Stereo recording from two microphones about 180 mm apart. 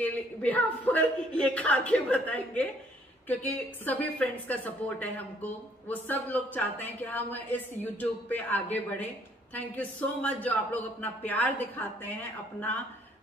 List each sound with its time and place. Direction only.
0.0 s a woman's voice: 10° left (ahead or behind)